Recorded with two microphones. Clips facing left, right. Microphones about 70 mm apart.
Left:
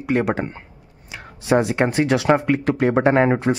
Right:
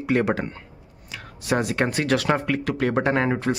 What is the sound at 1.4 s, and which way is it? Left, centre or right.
Speech, left.